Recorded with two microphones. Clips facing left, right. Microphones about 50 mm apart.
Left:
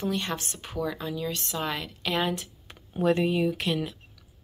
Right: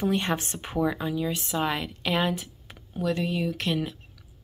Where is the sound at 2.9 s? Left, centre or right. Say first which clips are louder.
Left 4 dB; left.